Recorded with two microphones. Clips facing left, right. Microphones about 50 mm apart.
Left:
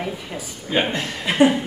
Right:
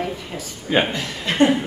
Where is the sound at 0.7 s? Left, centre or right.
Centre.